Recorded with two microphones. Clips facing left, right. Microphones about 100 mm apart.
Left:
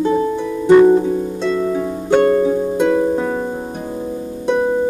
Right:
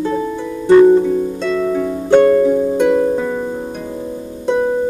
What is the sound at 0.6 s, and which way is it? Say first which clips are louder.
Harp: right 1 dB; 10° left (ahead or behind).